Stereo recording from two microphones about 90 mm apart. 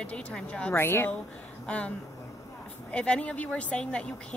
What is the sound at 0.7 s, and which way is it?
Speech, 25° left (ahead or behind).